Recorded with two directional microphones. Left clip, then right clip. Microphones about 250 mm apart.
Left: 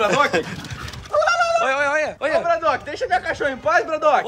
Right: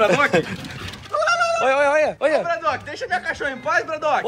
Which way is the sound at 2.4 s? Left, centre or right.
Left.